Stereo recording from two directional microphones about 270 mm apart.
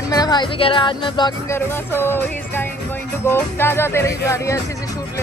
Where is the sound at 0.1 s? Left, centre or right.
Centre.